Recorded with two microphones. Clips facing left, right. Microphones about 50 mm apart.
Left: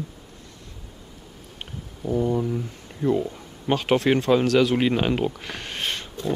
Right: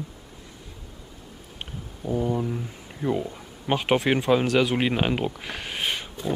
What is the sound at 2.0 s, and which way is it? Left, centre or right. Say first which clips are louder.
Speech: left 3 dB; centre.